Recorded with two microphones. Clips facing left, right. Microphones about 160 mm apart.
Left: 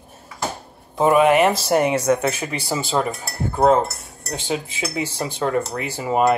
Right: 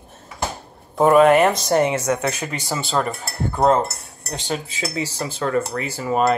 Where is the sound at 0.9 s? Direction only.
5° left (ahead or behind).